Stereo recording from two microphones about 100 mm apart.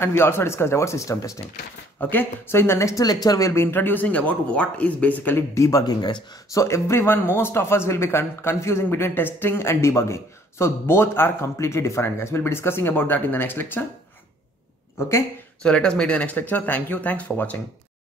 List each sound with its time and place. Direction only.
0.0 s speech: 25° left (ahead or behind)
2.0 s speech: 20° left (ahead or behind)
5.6 s speech: 35° left (ahead or behind)
6.5 s speech: 30° left (ahead or behind)
15.6 s speech: 10° left (ahead or behind)